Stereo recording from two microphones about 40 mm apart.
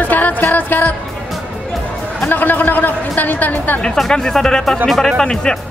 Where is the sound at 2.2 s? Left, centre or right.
Left.